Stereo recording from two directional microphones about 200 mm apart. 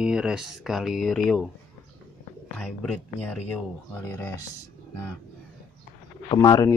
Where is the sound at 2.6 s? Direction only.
5° left (ahead or behind).